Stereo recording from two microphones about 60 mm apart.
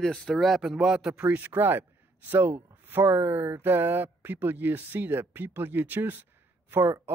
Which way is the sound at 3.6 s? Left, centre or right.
Right.